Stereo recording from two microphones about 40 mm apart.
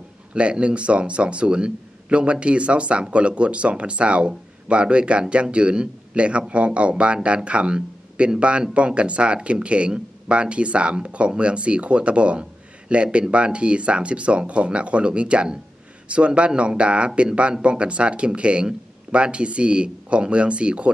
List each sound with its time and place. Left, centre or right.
0.3 s speech: right